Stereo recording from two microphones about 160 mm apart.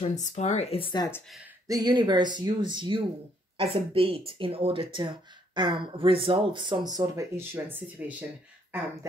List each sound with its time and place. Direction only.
0.0 s speech: 45° left (ahead or behind)
1.7 s speech: 25° right (ahead or behind)